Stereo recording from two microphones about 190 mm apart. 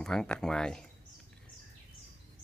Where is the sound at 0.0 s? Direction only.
5° left (ahead or behind).